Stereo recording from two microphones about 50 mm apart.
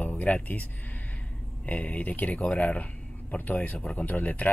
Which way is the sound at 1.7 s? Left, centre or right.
Left.